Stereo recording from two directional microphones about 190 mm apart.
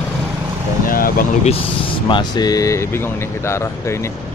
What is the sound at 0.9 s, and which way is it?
Speech, 50° left (ahead or behind).